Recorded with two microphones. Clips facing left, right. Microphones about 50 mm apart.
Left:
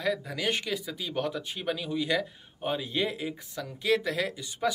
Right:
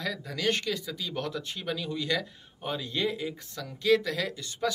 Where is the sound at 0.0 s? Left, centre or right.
Centre.